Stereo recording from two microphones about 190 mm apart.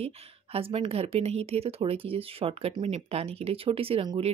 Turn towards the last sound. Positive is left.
turn(degrees=-30)  # may be behind; listen again after turning